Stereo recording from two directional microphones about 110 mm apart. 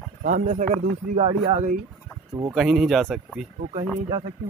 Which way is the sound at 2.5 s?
5° right (ahead or behind).